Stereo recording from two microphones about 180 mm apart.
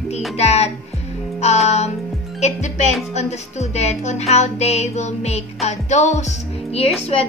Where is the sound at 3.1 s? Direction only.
35° left (ahead or behind).